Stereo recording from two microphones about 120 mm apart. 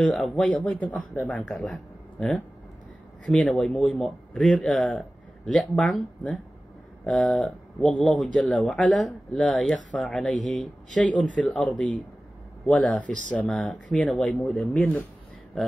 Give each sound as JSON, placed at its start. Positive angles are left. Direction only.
{"t": 0.0, "sound": "speech", "side_deg": 5}